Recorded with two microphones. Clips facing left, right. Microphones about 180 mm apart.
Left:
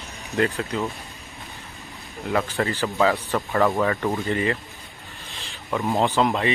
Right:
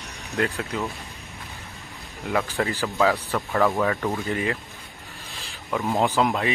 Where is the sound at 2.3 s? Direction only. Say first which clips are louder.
Left 1 dB; centre (ahead or behind).